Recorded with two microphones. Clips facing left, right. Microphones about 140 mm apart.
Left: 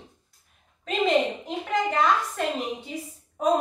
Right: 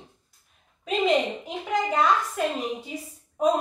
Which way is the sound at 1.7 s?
10° right (ahead or behind).